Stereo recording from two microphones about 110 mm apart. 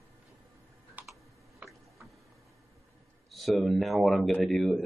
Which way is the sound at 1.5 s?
30° right (ahead or behind).